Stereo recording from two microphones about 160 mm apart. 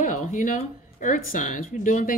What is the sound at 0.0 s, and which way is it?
A woman's voice, 50° left (ahead or behind).